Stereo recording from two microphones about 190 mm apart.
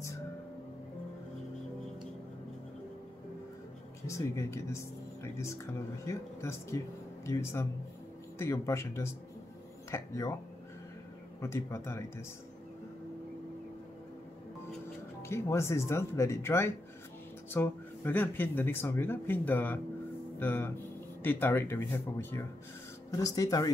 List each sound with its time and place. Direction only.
4.1 s speech: 15° left (ahead or behind)
11.4 s speech: 15° left (ahead or behind)
15.2 s speech: 15° left (ahead or behind)